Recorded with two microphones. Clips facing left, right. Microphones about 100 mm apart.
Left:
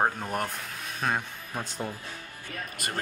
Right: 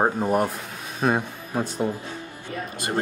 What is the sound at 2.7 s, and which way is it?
Speech, 30° right (ahead or behind).